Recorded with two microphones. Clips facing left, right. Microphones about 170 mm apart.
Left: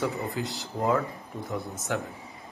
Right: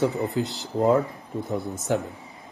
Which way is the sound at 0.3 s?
Centre (ahead or behind).